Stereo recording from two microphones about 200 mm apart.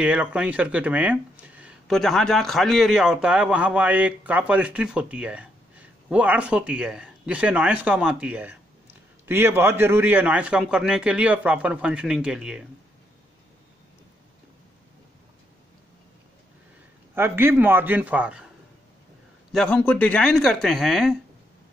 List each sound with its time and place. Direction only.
0.0 s speech: 5° right (ahead or behind)
17.1 s speech: 10° right (ahead or behind)
19.5 s speech: 5° left (ahead or behind)